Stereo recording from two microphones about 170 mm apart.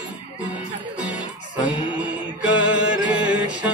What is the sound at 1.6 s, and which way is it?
Mantra, 10° right (ahead or behind).